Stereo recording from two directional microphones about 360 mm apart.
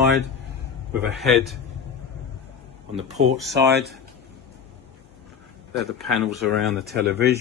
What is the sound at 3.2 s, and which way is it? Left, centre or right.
Speech, right.